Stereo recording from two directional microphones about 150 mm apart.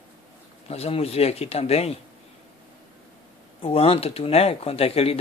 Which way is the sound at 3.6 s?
40° left (ahead or behind).